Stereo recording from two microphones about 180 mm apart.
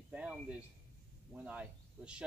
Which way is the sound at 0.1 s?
5° right (ahead or behind).